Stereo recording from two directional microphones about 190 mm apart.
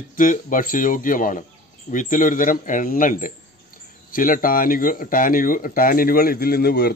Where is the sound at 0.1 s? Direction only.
45° left (ahead or behind).